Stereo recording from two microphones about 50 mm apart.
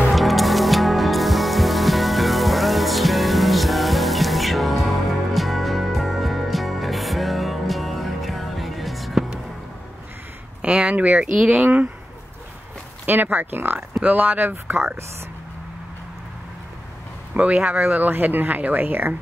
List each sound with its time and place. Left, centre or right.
0.1 s music: centre
10.6 s speech: right
13.0 s speech: right
17.3 s speech: right